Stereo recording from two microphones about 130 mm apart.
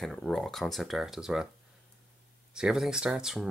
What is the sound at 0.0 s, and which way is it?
Speech, 5° left (ahead or behind).